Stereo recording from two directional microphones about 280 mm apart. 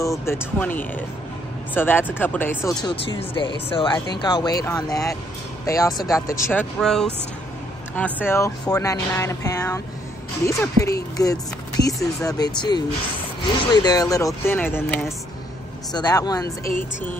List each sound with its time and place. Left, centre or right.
0.0 s speech: centre
13.8 s speech: centre